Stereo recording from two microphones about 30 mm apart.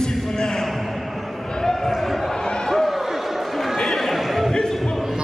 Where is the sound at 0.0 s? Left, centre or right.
Left; by 2.3 s centre.